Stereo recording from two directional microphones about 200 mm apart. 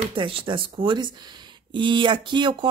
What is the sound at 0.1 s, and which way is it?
Speech, 25° right (ahead or behind).